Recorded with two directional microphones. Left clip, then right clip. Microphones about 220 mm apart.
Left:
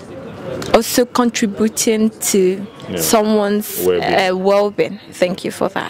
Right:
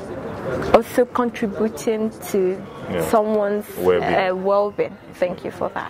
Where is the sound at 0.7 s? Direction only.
45° left (ahead or behind).